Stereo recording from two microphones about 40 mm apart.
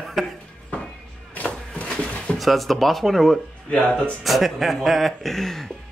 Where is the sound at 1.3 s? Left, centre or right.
Left.